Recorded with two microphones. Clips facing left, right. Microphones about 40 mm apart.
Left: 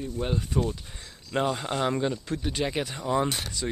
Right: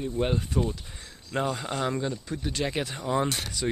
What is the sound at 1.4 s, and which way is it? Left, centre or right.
Speech, centre.